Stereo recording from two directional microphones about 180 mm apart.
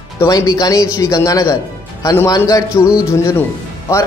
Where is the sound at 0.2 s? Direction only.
15° left (ahead or behind).